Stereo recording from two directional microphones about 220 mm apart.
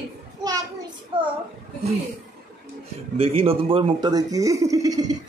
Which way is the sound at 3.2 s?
25° right (ahead or behind).